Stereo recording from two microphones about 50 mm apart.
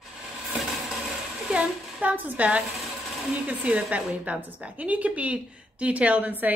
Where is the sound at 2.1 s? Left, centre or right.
Right.